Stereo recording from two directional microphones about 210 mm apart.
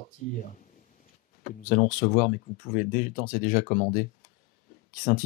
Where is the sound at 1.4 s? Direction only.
35° left (ahead or behind).